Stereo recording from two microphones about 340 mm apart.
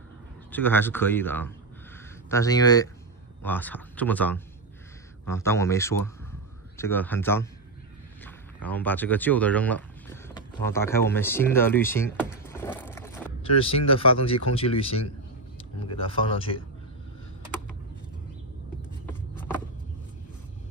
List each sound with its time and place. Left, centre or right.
0.5 s speech: centre
8.6 s speech: centre